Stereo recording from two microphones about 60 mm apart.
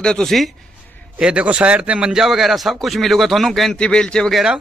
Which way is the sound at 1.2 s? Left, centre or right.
Centre.